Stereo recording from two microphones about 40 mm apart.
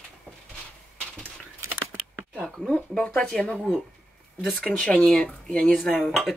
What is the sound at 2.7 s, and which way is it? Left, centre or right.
Speech, left.